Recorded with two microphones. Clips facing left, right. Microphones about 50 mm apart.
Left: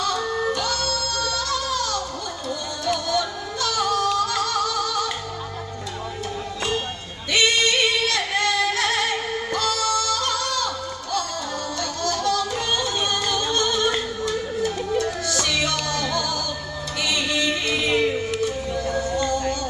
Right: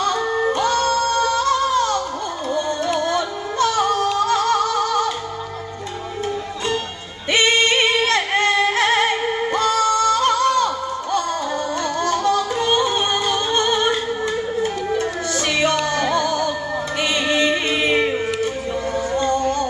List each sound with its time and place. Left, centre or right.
0.0 s music: right
7.2 s music: right